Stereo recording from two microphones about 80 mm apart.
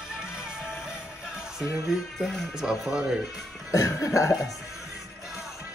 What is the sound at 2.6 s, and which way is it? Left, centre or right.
Speech, centre.